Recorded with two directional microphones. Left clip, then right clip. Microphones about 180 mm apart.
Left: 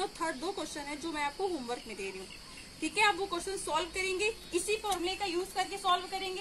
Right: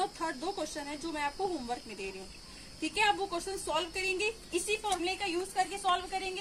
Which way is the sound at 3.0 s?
15° right (ahead or behind).